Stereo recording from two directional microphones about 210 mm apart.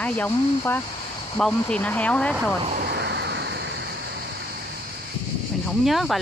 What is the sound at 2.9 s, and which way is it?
Vehicle, 55° right (ahead or behind).